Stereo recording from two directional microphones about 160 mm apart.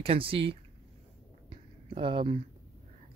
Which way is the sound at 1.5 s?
35° right (ahead or behind).